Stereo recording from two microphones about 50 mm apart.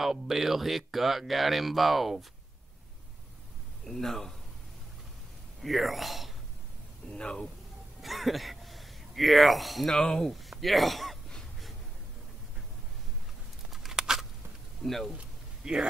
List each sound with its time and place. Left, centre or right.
0.0 s speech: centre
3.8 s speech: centre
5.6 s speech: centre
7.1 s speech: centre
8.0 s speech: centre
9.9 s speech: centre
10.3 s speech: centre
13.7 s a sound: centre
14.8 s speech: centre
15.6 s speech: centre